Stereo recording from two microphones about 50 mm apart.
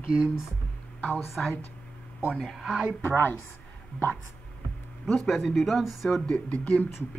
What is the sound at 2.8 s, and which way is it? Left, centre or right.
Speech, left.